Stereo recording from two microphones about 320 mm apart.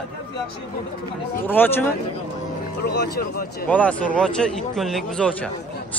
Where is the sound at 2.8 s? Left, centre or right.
Left.